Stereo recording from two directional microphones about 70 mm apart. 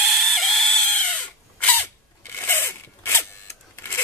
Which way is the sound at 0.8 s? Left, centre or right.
Left.